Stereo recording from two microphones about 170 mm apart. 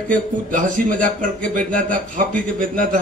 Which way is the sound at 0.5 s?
50° right (ahead or behind).